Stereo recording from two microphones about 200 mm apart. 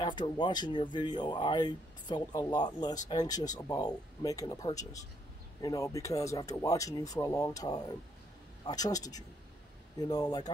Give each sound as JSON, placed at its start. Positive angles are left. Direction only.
{"t": 0.4, "sound": "speech", "side_deg": 20}